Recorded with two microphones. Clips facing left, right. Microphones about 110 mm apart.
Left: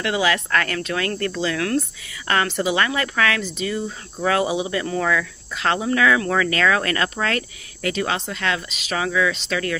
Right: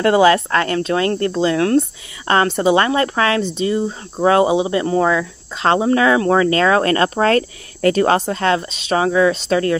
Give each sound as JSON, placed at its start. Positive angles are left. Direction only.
{"t": 0.0, "sound": "speech", "side_deg": -40}